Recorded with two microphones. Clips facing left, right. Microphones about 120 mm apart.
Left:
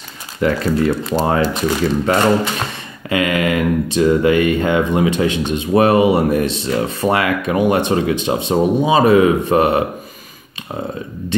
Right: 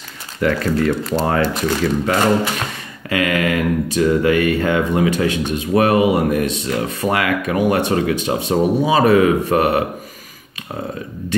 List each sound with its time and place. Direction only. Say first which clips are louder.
0.4 s speech: left 1 dB; 20° left (ahead or behind)